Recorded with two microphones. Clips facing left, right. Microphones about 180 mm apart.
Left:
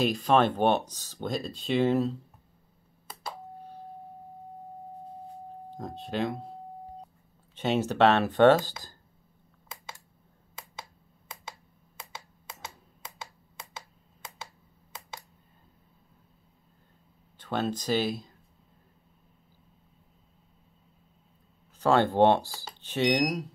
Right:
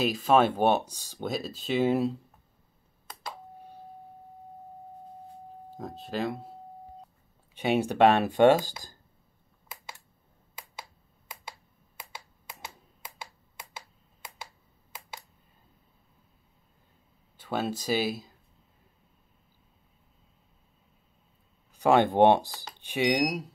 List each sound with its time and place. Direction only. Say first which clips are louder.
0.0 s speech: right 1 dB; 5° right (ahead or behind)
5.8 s speech: left 1 dB; centre (ahead or behind)
7.5 s speech: right 1 dB; 10° right (ahead or behind)
17.4 s speech: left 1 dB; 10° right (ahead or behind)
21.7 s speech: right 1 dB; 15° right (ahead or behind)